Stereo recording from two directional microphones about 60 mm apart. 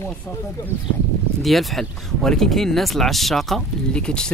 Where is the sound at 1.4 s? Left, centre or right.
Centre.